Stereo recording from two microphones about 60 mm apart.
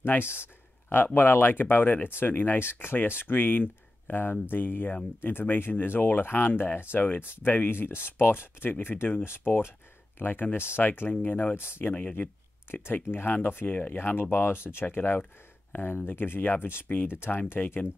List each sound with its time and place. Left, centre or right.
0.0 s speech: left
12.8 s speech: left
15.0 s speech: left